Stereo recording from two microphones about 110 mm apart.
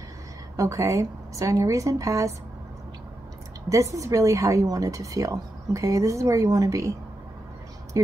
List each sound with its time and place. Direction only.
0.6 s a woman's voice: 30° right (ahead or behind)
3.6 s speech: 30° right (ahead or behind)